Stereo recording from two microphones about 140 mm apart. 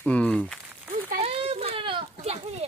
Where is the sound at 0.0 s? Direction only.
10° left (ahead or behind).